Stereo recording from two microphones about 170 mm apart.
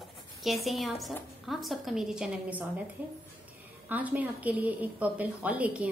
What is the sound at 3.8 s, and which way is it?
A woman's voice, 10° right (ahead or behind).